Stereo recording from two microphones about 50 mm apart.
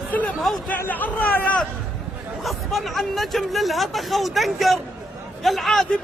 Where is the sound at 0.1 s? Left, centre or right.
Left.